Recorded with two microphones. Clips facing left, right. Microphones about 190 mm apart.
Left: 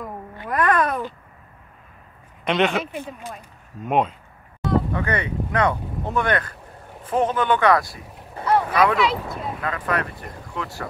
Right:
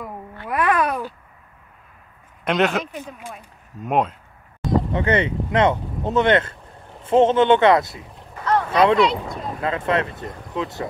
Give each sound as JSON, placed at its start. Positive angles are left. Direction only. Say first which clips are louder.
{"t": 0.5, "sound": "a sound", "louder": "even", "side_deg": -5}
{"t": 2.4, "sound": "speech", "louder": "right 1 dB", "side_deg": 0}
{"t": 4.9, "sound": "speech", "louder": "right 5 dB", "side_deg": -25}
{"t": 8.9, "sound": "speech", "louder": "right 4 dB", "side_deg": 0}
{"t": 9.6, "sound": "speech", "louder": "right 5 dB", "side_deg": -25}